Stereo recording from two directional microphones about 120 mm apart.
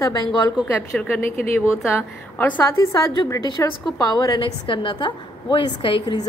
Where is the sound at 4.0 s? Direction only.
30° left (ahead or behind).